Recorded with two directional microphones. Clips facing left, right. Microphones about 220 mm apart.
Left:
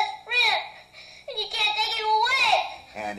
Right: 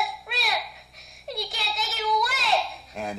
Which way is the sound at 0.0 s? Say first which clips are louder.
Even; centre (ahead or behind).